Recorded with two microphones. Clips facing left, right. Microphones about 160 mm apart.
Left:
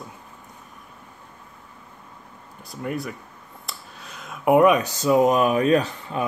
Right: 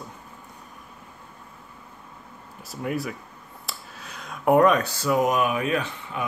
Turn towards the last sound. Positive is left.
turn(degrees=35)  # may be behind; listen again after turning